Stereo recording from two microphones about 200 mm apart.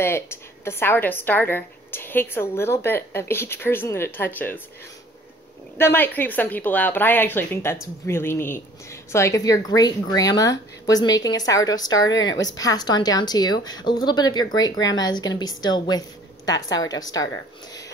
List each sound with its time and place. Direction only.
0.0 s a woman's voice: 10° left (ahead or behind)
5.8 s a woman's voice: 10° left (ahead or behind)